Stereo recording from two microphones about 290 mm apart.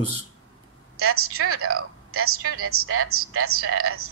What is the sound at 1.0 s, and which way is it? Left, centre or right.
A woman's voice, right.